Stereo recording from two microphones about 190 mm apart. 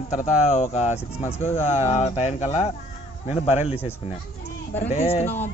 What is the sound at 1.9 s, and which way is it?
Speech, 35° left (ahead or behind).